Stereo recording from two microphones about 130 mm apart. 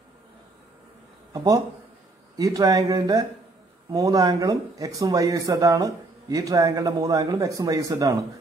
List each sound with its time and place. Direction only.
1.3 s speech: 30° right (ahead or behind)